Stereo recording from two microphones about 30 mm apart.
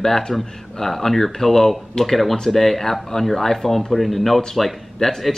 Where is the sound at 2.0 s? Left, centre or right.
Left.